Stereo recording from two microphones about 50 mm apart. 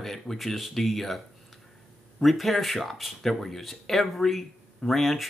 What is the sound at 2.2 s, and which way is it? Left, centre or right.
Speech, centre.